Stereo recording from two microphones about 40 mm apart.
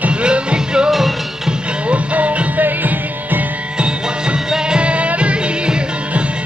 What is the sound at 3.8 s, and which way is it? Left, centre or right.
Music, right.